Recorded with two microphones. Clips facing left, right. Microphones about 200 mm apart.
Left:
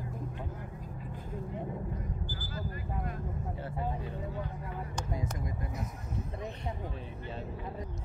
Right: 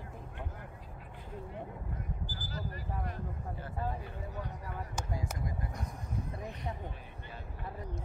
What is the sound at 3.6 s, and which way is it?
Vehicle, 20° left (ahead or behind).